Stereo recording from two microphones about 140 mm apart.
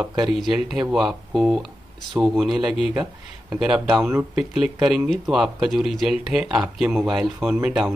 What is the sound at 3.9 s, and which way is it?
Speech, 20° right (ahead or behind).